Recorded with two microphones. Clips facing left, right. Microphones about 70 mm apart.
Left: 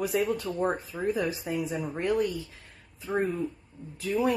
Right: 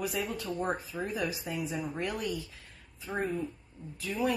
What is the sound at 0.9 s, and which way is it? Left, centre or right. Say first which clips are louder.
Speech: left 5 dB; left.